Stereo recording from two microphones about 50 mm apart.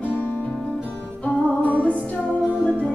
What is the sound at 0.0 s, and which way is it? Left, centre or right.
Music, left.